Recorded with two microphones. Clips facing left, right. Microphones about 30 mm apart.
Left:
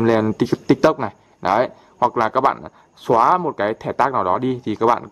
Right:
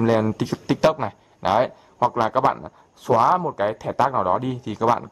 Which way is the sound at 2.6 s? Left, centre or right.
Left.